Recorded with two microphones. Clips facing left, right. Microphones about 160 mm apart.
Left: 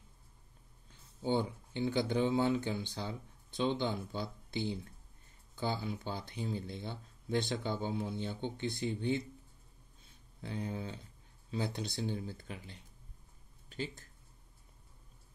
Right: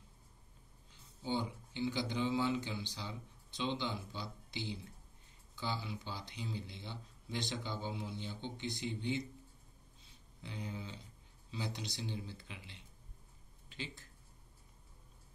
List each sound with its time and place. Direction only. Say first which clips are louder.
1.2 s a man's voice: left 5 dB; 55° left (ahead or behind)
10.4 s a man's voice: left 6 dB; 50° left (ahead or behind)